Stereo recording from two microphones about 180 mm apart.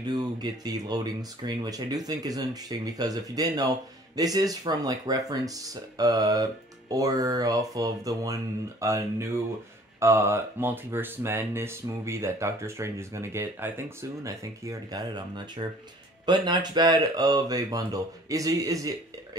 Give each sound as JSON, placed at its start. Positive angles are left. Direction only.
{"t": 0.0, "sound": "speech", "side_deg": -20}